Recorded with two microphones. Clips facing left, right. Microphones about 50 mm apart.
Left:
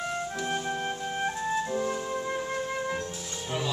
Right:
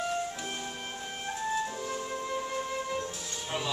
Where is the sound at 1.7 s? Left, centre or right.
Centre.